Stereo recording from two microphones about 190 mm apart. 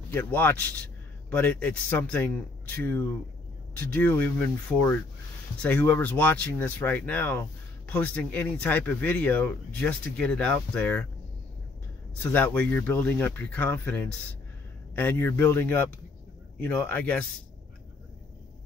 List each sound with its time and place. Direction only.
0.1 s speech: 10° left (ahead or behind)
12.2 s speech: 10° left (ahead or behind)